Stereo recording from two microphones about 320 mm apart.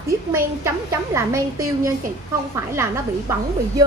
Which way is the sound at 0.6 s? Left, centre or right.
Centre.